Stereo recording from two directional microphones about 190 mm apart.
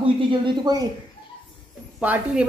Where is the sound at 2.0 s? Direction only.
5° right (ahead or behind).